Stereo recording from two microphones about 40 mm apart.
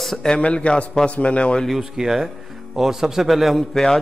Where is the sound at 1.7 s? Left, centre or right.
Centre.